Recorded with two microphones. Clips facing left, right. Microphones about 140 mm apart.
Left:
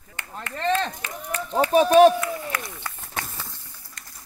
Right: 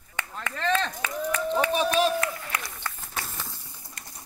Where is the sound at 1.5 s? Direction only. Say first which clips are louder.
Left 8 dB; 45° left (ahead or behind).